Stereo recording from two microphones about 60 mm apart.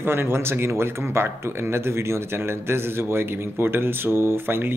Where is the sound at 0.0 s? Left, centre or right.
Right.